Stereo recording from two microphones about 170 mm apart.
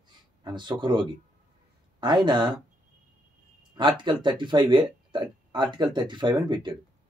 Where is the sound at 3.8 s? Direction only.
25° right (ahead or behind).